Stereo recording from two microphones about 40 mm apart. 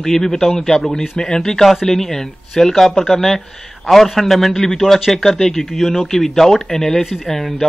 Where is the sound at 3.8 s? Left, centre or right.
Centre.